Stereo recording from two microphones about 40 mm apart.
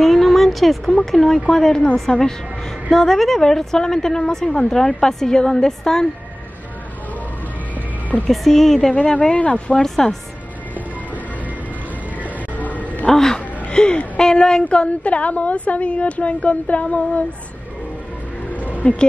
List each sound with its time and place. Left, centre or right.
0.0 s a sound: centre
0.9 s speech: centre
8.3 s speech: centre
8.9 s speech: left
9.7 s speech: centre
12.2 s a sound: left
13.1 s speech: centre
13.7 s a woman's voice: left
18.8 s speech: left